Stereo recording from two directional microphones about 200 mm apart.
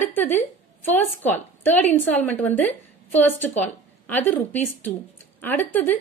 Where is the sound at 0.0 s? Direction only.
10° left (ahead or behind).